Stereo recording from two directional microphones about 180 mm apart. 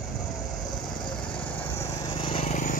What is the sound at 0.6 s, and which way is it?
Vehicle, 25° left (ahead or behind).